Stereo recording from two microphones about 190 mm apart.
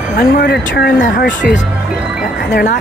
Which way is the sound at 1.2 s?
60° left (ahead or behind).